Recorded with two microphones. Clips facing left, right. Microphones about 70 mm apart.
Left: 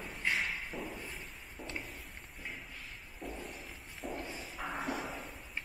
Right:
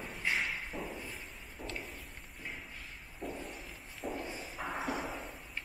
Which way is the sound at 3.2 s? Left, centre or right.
Centre.